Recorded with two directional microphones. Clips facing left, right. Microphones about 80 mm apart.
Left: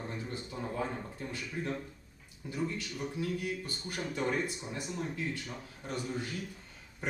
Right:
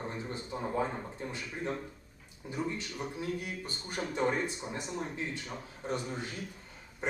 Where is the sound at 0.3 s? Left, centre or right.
Right.